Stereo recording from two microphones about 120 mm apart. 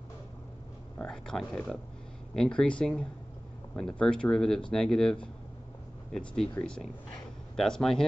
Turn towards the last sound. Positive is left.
turn(degrees=5)  # may be behind; listen again after turning